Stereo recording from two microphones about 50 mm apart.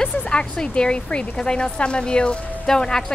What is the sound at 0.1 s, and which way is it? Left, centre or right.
Speech, left.